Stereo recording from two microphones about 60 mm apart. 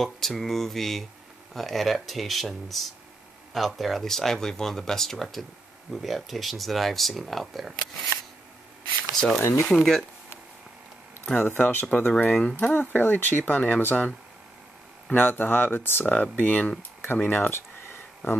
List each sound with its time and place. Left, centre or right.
0.0 s speech: centre
9.1 s a sound: centre
9.7 s speech: centre
11.3 s speech: left
12.3 s speech: centre
12.5 s speech: left
17.0 s a sound: left